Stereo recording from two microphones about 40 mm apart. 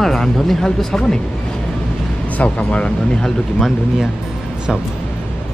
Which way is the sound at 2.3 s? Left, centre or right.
Left.